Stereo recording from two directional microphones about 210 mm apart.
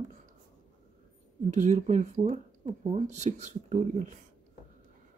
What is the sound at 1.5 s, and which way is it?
Speech, 35° right (ahead or behind).